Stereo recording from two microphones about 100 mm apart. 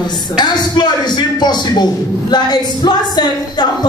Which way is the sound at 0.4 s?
45° left (ahead or behind).